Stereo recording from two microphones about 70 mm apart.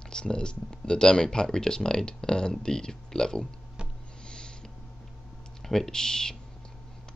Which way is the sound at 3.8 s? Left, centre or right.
Centre.